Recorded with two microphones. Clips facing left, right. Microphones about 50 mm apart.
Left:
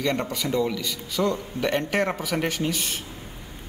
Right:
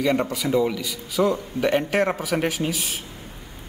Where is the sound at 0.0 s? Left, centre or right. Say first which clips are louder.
Right 4 dB; centre.